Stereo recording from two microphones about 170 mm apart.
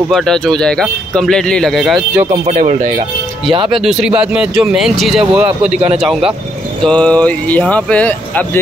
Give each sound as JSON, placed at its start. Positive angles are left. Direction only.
{"t": 0.1, "sound": "speech", "side_deg": 0}
{"t": 2.4, "sound": "speech", "side_deg": -45}
{"t": 3.7, "sound": "speech", "side_deg": 0}